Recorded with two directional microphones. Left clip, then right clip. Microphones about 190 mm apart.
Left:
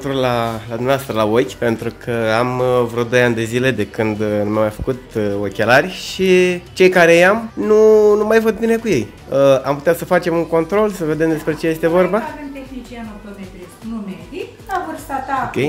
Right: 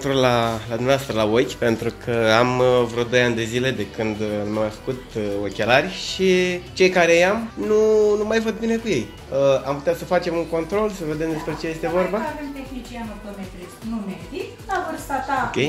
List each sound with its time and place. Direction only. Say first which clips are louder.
0.0 s speech: left 1 dB; centre (ahead or behind)
0.8 s speech: left 3 dB; 20° left (ahead or behind); by 12.2 s 55° left (ahead or behind)